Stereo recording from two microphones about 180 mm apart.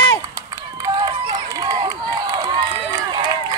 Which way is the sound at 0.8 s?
20° right (ahead or behind).